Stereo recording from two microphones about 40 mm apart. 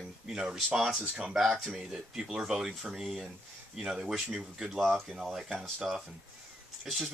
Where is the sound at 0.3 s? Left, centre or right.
Right.